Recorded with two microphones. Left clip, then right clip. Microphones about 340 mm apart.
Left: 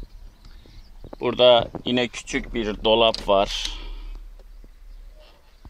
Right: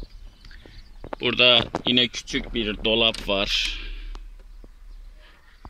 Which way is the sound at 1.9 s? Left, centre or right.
Left.